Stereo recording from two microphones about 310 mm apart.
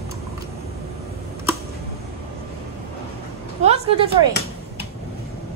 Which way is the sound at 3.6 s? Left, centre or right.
Centre.